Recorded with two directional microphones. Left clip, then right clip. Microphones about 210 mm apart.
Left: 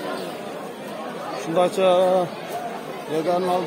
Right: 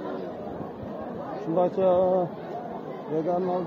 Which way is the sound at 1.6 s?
15° left (ahead or behind).